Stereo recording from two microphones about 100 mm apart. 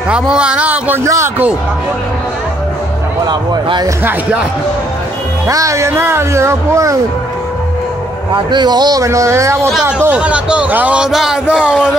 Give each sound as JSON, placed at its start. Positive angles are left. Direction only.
{"t": 0.1, "sound": "a man's voice", "side_deg": -10}
{"t": 1.0, "sound": "speech", "side_deg": -30}
{"t": 3.3, "sound": "speech", "side_deg": -50}
{"t": 5.5, "sound": "speech", "side_deg": -30}
{"t": 8.5, "sound": "speech", "side_deg": -45}
{"t": 9.0, "sound": "speech", "side_deg": -30}
{"t": 9.7, "sound": "a man's voice", "side_deg": -5}